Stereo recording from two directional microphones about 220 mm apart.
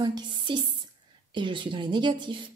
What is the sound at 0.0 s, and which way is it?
Speech, 20° right (ahead or behind).